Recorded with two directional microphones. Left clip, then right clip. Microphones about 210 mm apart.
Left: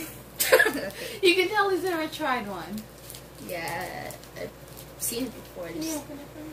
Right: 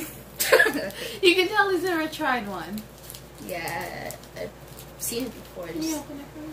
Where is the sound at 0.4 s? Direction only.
Centre (ahead or behind).